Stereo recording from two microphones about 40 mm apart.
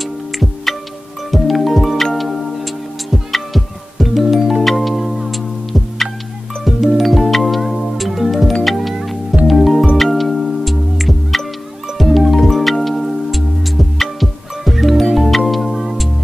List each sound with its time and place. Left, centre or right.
0.0 s music: centre